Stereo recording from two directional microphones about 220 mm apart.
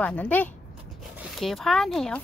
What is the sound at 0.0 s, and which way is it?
Speech, 5° left (ahead or behind).